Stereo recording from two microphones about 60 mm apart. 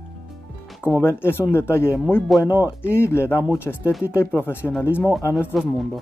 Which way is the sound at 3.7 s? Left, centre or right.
Left.